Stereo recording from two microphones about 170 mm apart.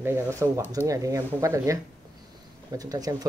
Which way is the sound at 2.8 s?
20° right (ahead or behind).